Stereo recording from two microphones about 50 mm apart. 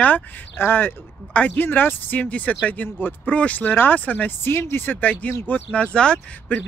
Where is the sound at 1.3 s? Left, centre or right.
Left.